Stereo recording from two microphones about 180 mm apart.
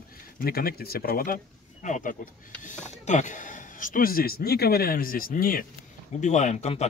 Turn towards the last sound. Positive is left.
turn(degrees=35)  # may be behind; listen again after turning